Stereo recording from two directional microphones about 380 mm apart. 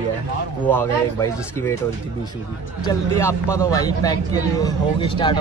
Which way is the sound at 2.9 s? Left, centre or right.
Centre.